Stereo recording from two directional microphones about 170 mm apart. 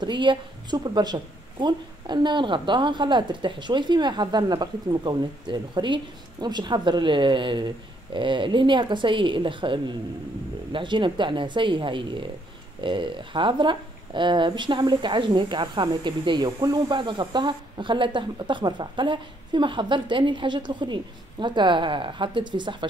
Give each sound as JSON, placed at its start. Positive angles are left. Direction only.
{"t": 0.0, "sound": "speech", "side_deg": -30}